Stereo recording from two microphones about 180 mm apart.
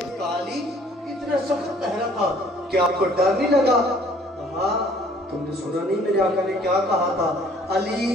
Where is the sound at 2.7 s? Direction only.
60° right (ahead or behind).